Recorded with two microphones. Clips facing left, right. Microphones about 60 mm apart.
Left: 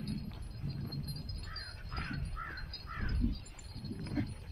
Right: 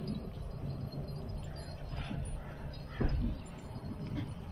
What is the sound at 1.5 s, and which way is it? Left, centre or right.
Crow, left.